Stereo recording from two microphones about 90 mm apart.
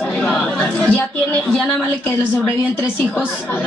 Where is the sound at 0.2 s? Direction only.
15° left (ahead or behind).